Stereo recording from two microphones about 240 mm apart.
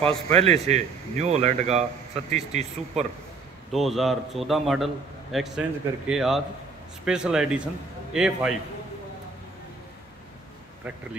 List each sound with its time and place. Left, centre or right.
0.0 s speech: right
3.7 s a man's voice: centre